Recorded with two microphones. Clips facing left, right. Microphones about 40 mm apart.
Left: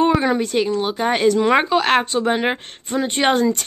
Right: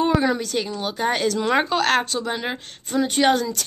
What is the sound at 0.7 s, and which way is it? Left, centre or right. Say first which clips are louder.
Speech: left 4 dB; centre.